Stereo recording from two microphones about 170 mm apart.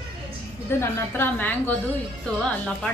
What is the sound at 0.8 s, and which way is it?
Speech, 10° left (ahead or behind).